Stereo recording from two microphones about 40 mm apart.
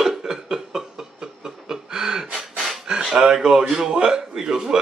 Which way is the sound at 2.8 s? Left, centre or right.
Centre.